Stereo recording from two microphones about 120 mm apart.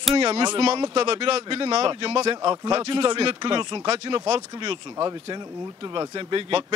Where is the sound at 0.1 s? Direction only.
50° right (ahead or behind).